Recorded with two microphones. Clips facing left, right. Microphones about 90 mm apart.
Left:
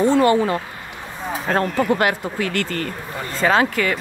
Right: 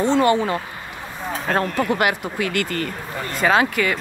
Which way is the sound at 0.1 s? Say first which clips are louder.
Left 1 dB; 20° right (ahead or behind).